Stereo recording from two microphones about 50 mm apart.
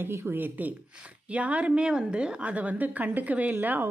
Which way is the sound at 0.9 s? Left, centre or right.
Right.